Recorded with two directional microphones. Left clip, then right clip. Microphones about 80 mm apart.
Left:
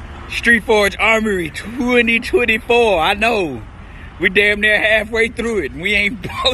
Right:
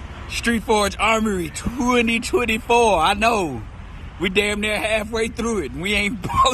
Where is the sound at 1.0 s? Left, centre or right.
Centre.